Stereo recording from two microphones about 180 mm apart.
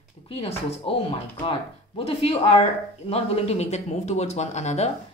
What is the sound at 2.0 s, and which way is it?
A woman's voice, 35° left (ahead or behind).